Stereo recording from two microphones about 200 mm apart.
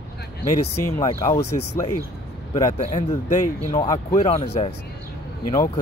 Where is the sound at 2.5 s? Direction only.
25° left (ahead or behind).